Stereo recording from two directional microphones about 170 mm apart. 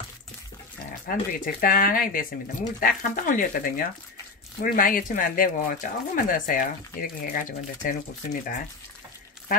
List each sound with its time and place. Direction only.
1.0 s speech: 55° left (ahead or behind)